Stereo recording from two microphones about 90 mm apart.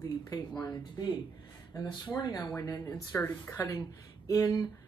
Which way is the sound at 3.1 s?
25° left (ahead or behind).